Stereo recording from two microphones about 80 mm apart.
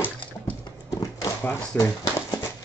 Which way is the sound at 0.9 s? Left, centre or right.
Left.